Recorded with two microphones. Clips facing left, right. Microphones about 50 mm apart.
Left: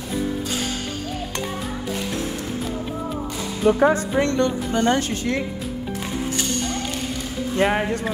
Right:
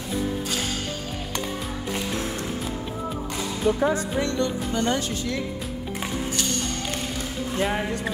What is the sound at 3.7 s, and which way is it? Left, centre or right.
Speech, left.